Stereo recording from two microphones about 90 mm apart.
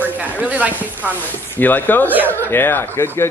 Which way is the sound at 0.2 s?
15° right (ahead or behind).